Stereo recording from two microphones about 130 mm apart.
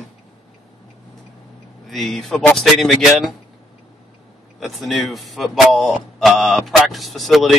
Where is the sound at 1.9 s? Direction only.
Centre (ahead or behind).